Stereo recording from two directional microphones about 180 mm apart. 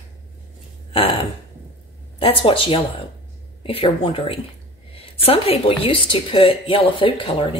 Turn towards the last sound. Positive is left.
turn(degrees=30)  # may be behind; listen again after turning